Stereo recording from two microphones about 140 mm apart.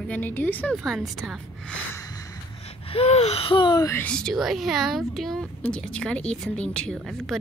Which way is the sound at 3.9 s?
10° left (ahead or behind).